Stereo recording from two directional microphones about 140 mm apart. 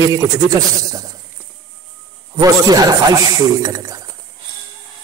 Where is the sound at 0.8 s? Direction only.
25° right (ahead or behind).